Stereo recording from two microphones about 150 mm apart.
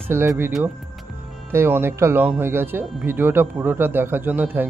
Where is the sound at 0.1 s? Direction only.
15° right (ahead or behind).